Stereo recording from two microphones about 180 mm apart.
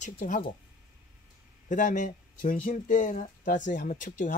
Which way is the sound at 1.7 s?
45° left (ahead or behind).